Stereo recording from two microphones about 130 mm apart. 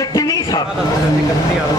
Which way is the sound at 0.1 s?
30° left (ahead or behind).